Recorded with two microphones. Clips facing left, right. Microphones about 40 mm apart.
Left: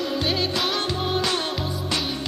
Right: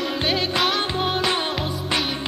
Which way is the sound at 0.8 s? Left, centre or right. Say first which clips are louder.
Right 2 dB; right.